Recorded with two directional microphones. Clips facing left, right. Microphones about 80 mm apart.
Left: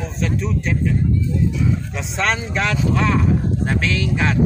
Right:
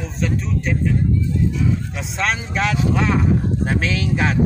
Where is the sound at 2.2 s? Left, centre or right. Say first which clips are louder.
Left 1 dB; centre.